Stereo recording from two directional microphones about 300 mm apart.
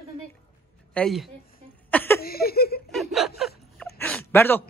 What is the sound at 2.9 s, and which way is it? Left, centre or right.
Snicker, centre.